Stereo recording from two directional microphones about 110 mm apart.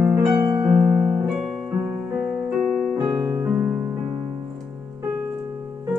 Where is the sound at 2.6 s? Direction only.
Centre (ahead or behind).